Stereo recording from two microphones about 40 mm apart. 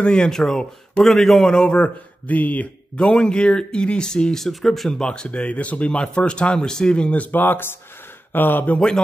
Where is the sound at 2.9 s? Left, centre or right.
Left.